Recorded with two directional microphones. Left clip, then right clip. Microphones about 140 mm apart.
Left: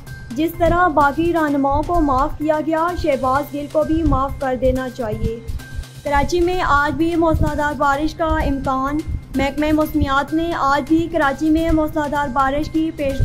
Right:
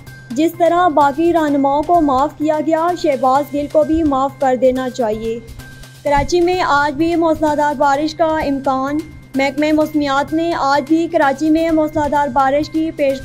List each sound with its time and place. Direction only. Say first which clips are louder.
0.4 s a woman's voice: right 3 dB; 20° right (ahead or behind); by 2.0 s centre (ahead or behind)
2.0 s a woman's voice: right 3 dB; 15° right (ahead or behind)
6.0 s a woman's voice: right 4 dB; 15° right (ahead or behind)